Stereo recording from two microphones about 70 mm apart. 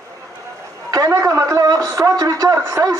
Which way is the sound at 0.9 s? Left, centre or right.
Right.